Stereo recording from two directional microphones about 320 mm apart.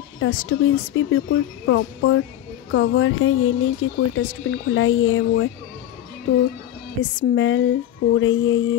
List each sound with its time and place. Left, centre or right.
0.2 s speech: left
7.2 s speech: left